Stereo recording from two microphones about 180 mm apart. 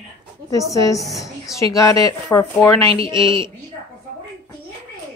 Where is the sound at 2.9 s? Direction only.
30° right (ahead or behind).